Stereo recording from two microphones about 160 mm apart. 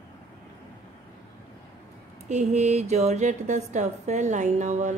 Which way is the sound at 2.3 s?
45° right (ahead or behind).